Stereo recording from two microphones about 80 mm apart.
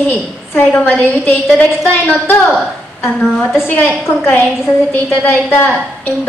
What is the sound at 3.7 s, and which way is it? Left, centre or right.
A woman's voice, left.